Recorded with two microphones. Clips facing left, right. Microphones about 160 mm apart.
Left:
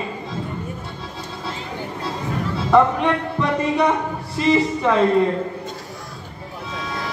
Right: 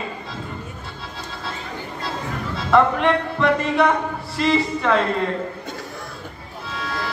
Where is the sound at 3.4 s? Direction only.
15° left (ahead or behind).